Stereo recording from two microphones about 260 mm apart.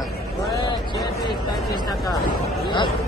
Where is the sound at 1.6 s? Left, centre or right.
Centre.